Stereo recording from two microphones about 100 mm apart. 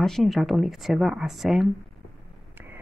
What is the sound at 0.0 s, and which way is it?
Speech, centre (ahead or behind).